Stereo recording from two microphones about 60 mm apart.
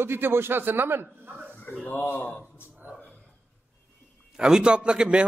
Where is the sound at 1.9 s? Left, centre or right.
Left.